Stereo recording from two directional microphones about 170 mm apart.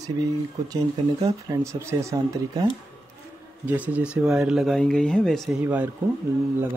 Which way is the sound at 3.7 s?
10° right (ahead or behind).